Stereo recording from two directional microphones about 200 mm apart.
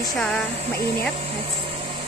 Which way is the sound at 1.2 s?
30° right (ahead or behind).